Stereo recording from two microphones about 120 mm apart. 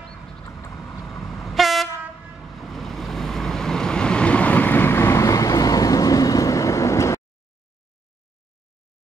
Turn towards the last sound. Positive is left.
turn(degrees=25)  # may be behind; listen again after turning